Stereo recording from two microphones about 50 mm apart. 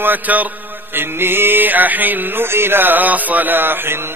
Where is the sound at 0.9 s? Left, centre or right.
Right.